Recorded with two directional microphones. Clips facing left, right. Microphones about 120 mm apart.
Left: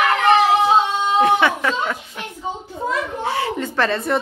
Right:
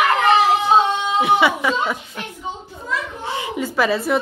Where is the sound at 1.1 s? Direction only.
5° right (ahead or behind).